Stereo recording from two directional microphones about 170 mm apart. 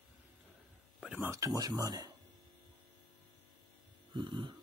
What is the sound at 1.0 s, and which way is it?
Speech, 5° right (ahead or behind).